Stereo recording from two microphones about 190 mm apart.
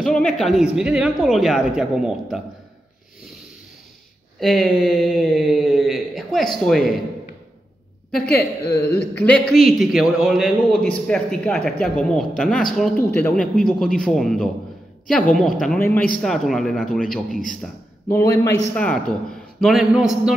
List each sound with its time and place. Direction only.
0.0 s a woman's voice: 5° left (ahead or behind)
4.4 s speech: centre (ahead or behind)
8.6 s a man's voice: 15° left (ahead or behind)
17.6 s speech: 15° left (ahead or behind)
18.8 s speech: 5° left (ahead or behind)